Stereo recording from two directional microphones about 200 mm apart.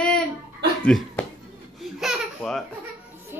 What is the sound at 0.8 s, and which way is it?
Speech, 5° left (ahead or behind).